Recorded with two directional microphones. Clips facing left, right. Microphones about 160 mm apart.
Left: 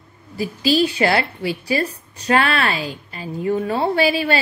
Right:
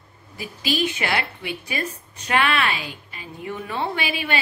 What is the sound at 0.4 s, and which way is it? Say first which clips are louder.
A woman's voice: left 7 dB; 35° left (ahead or behind).